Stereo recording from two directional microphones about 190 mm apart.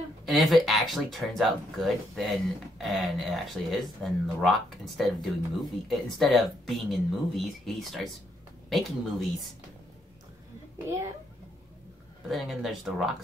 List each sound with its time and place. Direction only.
0.2 s speech: centre (ahead or behind)
12.3 s speech: centre (ahead or behind)